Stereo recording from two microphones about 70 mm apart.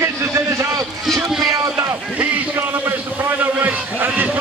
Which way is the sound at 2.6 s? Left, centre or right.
Right.